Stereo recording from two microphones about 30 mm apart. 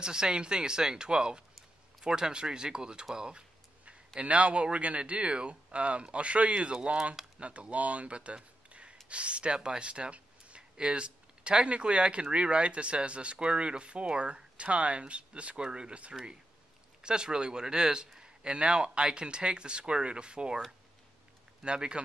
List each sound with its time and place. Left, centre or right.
0.0 s speech: right
4.2 s speech: right
7.3 s speech: right
8.6 s a sound: right
9.1 s speech: right
15.5 s speech: right
17.0 s speech: right
21.6 s speech: right